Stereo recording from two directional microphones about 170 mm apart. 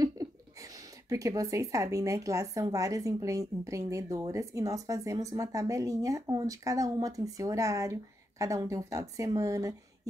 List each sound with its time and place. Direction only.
1.0 s speech: 20° right (ahead or behind)